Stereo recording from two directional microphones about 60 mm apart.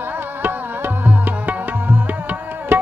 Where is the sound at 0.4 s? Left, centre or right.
Right.